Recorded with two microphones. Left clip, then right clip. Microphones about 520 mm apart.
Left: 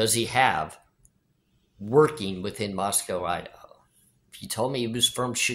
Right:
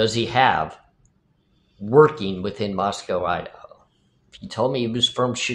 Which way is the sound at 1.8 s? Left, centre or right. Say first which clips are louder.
Right 6 dB; left.